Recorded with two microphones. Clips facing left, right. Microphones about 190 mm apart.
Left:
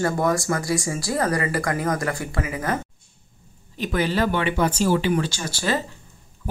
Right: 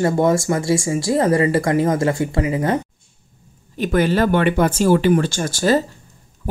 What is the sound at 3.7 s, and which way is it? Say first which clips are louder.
Speech: right 6 dB; 50° right (ahead or behind).